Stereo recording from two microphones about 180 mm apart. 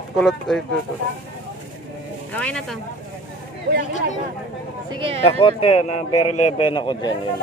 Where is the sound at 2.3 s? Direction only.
5° left (ahead or behind).